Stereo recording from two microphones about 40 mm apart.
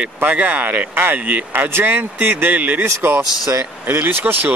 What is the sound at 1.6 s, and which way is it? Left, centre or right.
Speech, right.